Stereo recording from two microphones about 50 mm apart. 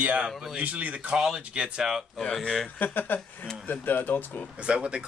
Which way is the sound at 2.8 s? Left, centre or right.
Left.